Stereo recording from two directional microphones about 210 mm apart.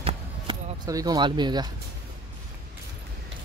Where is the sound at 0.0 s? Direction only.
20° right (ahead or behind).